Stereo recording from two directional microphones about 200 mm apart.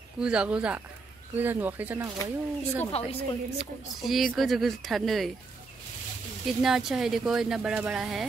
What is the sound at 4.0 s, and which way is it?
A woman's voice, centre (ahead or behind).